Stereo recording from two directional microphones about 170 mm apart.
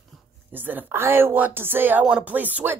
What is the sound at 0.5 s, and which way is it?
Speech, 10° right (ahead or behind).